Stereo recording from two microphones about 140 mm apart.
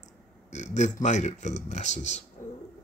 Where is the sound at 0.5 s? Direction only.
55° left (ahead or behind).